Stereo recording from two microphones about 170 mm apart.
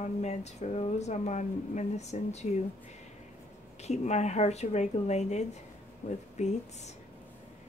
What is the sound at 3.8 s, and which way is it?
Speech, 40° left (ahead or behind).